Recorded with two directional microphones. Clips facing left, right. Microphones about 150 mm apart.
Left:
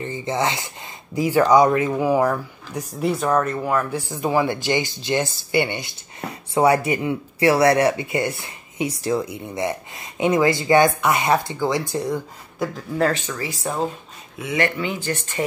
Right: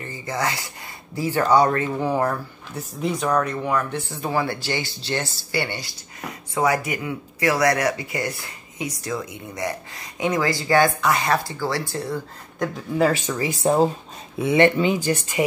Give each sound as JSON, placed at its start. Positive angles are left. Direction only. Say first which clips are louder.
{"t": 0.0, "sound": "speech", "louder": "left 4 dB", "side_deg": 25}
{"t": 12.5, "sound": "speech", "louder": "right 1 dB", "side_deg": 0}
{"t": 13.3, "sound": "speech", "louder": "right 6 dB", "side_deg": -20}